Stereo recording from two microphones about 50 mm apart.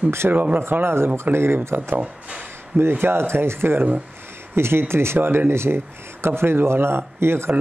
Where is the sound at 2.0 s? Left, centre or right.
Right.